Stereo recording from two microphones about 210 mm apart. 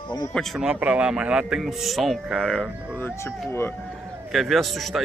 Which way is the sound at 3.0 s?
10° left (ahead or behind).